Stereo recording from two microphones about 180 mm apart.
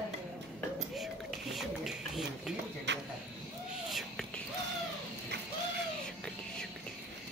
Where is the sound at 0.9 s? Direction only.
Centre (ahead or behind).